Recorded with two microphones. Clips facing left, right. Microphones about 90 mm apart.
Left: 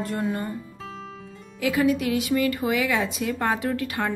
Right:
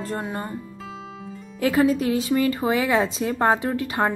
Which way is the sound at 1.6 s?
40° right (ahead or behind).